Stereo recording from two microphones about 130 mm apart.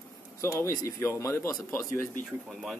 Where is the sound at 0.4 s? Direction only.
20° left (ahead or behind).